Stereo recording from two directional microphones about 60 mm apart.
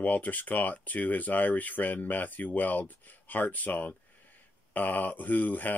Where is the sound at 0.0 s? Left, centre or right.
Left.